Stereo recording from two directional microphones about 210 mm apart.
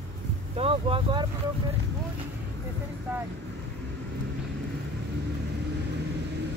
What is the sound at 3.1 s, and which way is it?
Speech, 10° right (ahead or behind).